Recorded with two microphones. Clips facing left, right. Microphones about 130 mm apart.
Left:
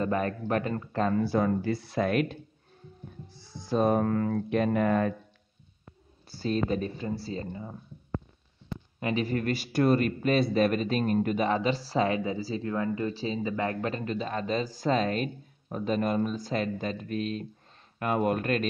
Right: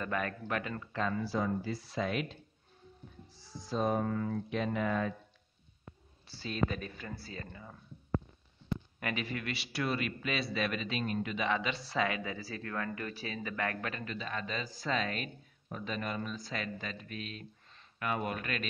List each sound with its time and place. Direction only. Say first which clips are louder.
0.0 s speech: left 7 dB; 35° left (ahead or behind)
1.2 s speech: left 7 dB; 60° left (ahead or behind)
3.6 s speech: left 7 dB; 60° left (ahead or behind)
6.2 s speech: left 6 dB; 45° left (ahead or behind); by 7.7 s 25° left (ahead or behind)
9.0 s speech: left 11 dB; 35° left (ahead or behind)
12.2 s speech: left 9 dB; 25° left (ahead or behind); by 18.7 s 40° left (ahead or behind)